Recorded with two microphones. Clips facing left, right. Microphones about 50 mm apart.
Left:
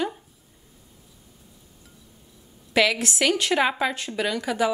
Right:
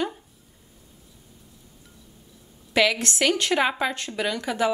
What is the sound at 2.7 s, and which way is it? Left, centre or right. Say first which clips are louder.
Speech: even; centre.